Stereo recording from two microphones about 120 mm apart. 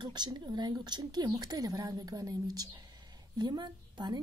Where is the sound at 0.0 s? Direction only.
35° right (ahead or behind).